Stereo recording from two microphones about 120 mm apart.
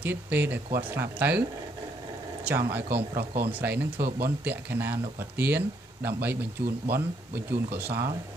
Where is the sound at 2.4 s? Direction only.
15° right (ahead or behind).